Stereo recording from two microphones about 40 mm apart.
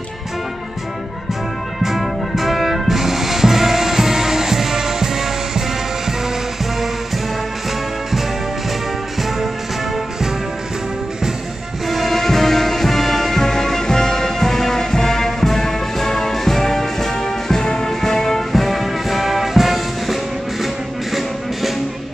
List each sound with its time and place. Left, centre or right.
1.8 s music: centre
11.9 s music: centre